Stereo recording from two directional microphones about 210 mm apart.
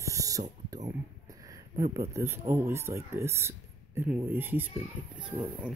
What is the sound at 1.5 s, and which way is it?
Speech, 15° right (ahead or behind).